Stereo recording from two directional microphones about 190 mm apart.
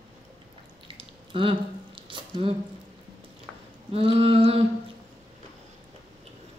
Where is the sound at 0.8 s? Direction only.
25° right (ahead or behind).